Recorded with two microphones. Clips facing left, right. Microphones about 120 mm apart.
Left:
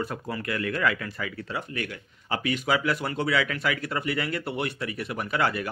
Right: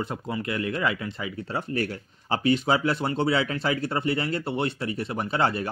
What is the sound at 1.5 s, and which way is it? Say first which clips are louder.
Speech: right 4 dB; 35° right (ahead or behind).